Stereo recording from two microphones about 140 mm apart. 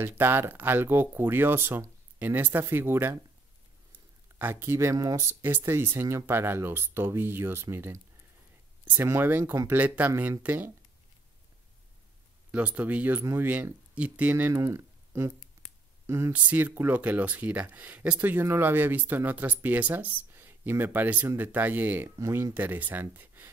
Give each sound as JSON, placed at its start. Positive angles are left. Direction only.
{"t": 0.0, "sound": "speech", "side_deg": -15}
{"t": 4.4, "sound": "speech", "side_deg": -15}
{"t": 12.4, "sound": "speech", "side_deg": -10}